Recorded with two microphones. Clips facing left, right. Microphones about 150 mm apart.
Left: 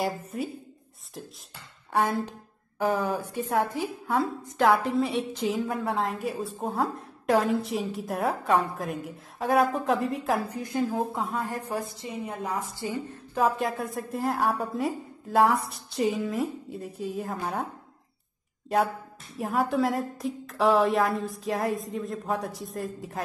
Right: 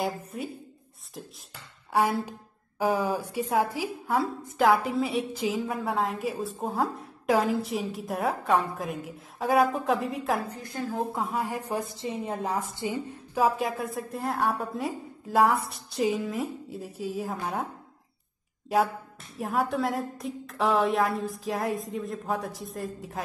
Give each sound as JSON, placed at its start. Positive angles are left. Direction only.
{"t": 0.0, "sound": "a woman's voice", "side_deg": 0}
{"t": 1.9, "sound": "a woman's voice", "side_deg": -5}
{"t": 3.2, "sound": "a woman's voice", "side_deg": -10}
{"t": 10.5, "sound": "a woman's voice", "side_deg": 15}
{"t": 11.0, "sound": "a woman's voice", "side_deg": 0}
{"t": 11.3, "sound": "a woman's voice", "side_deg": -15}
{"t": 12.7, "sound": "a woman's voice", "side_deg": -15}
{"t": 13.4, "sound": "a woman's voice", "side_deg": 0}
{"t": 18.7, "sound": "a woman's voice", "side_deg": 0}